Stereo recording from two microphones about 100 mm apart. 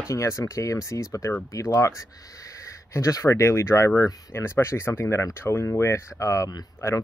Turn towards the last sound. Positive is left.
turn(degrees=35)  # may be behind; listen again after turning